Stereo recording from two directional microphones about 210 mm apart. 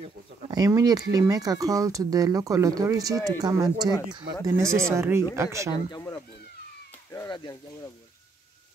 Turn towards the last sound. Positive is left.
turn(degrees=15)  # may be behind; listen again after turning